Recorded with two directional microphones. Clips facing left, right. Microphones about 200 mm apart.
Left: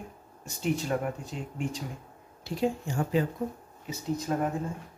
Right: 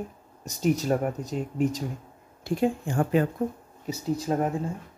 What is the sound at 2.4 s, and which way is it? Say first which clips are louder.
Speech: right 4 dB; 50° right (ahead or behind).